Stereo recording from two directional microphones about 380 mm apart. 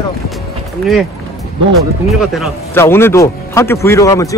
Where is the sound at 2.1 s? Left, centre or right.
Centre.